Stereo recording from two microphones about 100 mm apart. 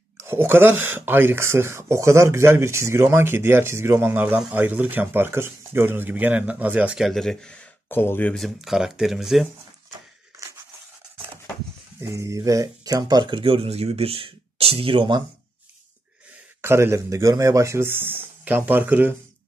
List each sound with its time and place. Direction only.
0.2 s speech: 25° right (ahead or behind)
7.1 s speech: 5° left (ahead or behind)
7.9 s speech: 20° left (ahead or behind)
8.4 s speech: 5° right (ahead or behind)
10.4 s a sound: 30° right (ahead or behind)
12.0 s speech: 30° right (ahead or behind); by 15.2 s 55° right (ahead or behind)
16.6 s speech: 25° right (ahead or behind)